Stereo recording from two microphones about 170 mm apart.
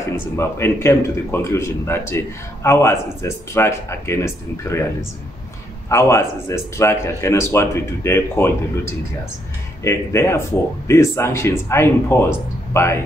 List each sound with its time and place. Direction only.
0.1 s speech: 15° left (ahead or behind)
5.9 s speech: 15° left (ahead or behind)